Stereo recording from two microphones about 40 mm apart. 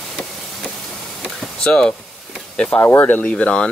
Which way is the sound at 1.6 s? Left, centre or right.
Left.